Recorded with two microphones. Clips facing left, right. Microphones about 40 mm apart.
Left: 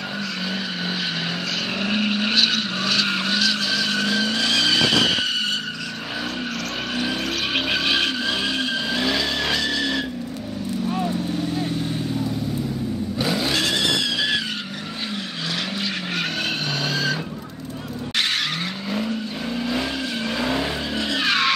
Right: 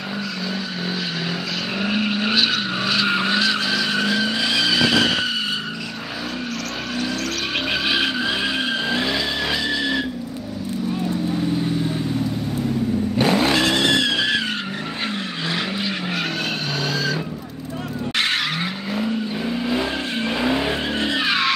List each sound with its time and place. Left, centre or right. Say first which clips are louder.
1.8 s vehicle: right 1 dB; centre
7.7 s vehicle: right 2 dB; centre
13.2 s vehicle: right 5 dB; right
16.9 s vehicle: even; centre
18.9 s vehicle: right 2 dB; centre
20.9 s vehicle: right 2 dB; right
21.2 s vehicle: left 1 dB; centre